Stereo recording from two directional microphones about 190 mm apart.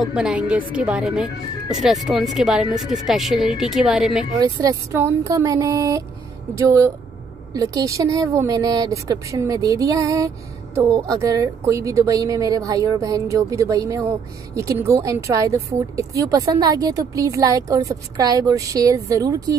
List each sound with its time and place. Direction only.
0.1 s speech: 5° right (ahead or behind)
4.4 s a woman's voice: 20° right (ahead or behind)
7.5 s a woman's voice: 20° right (ahead or behind)